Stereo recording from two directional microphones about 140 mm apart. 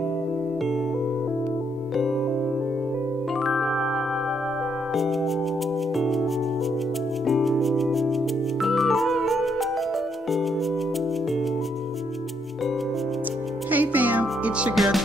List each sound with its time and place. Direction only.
3.4 s music: centre (ahead or behind)
4.9 s music: centre (ahead or behind)
7.2 s music: centre (ahead or behind)
13.7 s music: 10° right (ahead or behind)